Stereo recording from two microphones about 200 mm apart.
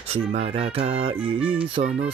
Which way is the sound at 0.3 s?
30° right (ahead or behind).